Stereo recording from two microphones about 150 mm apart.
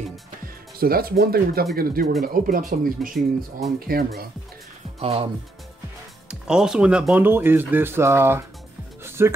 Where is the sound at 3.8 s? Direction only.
85° right.